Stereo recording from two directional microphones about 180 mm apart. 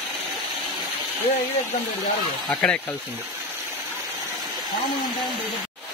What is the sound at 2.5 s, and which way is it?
Speech, 5° left (ahead or behind).